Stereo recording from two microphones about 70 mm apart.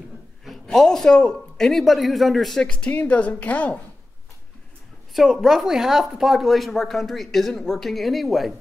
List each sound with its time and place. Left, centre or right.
0.5 s a man's voice: centre; by 3.8 s left
5.1 s speech: centre